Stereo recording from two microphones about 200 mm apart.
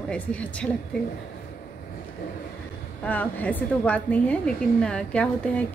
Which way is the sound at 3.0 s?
10° left (ahead or behind).